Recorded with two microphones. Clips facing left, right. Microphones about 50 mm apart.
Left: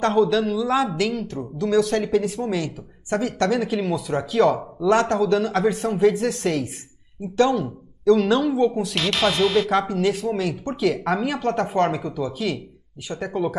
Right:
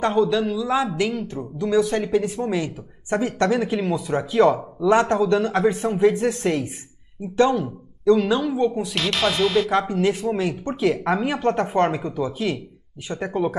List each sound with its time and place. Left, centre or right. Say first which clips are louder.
0.1 s speech: left 1 dB; centre
1.6 s speech: even; centre
1.9 s speech: even; centre
2.6 s a woman's voice: right 1 dB; right
3.4 s speech: right 1 dB; centre
7.3 s a woman's voice: right 1 dB; centre
8.3 s speech: left 2 dB; centre
13.1 s a woman's voice: right 1 dB; centre